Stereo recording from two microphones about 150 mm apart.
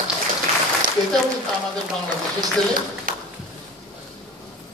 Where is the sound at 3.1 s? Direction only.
70° right (ahead or behind).